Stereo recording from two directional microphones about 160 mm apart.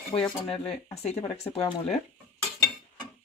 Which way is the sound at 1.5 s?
40° left (ahead or behind).